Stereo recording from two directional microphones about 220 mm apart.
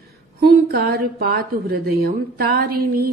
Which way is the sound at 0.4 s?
45° right (ahead or behind).